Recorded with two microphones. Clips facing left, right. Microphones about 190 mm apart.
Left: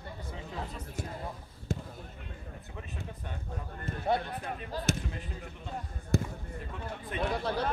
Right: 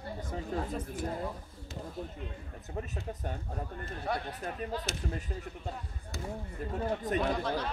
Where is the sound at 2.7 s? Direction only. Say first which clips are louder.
Right 7 dB; 40° right (ahead or behind).